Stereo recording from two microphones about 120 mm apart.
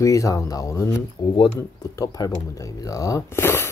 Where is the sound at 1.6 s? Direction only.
30° left (ahead or behind).